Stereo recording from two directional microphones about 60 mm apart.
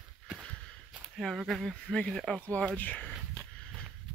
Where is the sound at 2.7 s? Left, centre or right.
Left.